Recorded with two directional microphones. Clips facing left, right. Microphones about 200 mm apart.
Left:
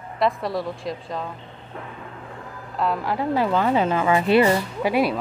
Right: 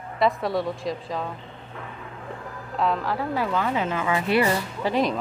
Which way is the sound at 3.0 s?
15° left (ahead or behind).